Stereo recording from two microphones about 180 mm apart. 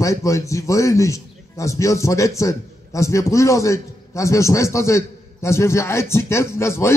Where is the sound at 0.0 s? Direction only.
15° left (ahead or behind).